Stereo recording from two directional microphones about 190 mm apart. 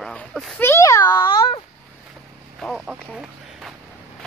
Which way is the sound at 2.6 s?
Centre (ahead or behind).